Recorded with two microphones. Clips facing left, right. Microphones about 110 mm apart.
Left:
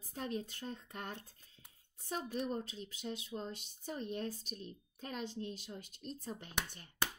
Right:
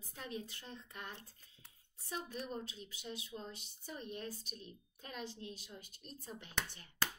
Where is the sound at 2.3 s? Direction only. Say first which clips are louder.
Left 5 dB; 40° left (ahead or behind).